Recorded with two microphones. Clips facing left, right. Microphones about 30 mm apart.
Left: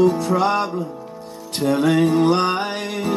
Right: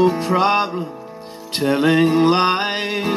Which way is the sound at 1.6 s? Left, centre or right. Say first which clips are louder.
Right 1 dB; right.